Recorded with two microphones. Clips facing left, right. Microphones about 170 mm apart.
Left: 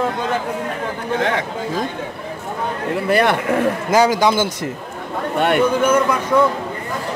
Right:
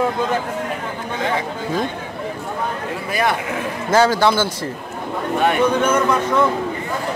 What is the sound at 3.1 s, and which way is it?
Speech, 60° left (ahead or behind).